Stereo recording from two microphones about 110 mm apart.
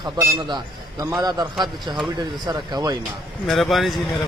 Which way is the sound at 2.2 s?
40° right (ahead or behind).